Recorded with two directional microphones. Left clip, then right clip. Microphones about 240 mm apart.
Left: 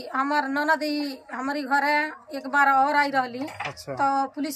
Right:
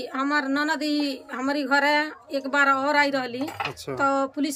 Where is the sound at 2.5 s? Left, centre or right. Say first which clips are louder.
Left 1 dB; right.